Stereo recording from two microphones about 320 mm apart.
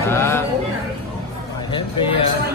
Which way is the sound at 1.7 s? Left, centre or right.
Centre.